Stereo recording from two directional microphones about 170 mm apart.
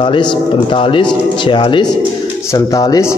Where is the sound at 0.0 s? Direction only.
30° left (ahead or behind).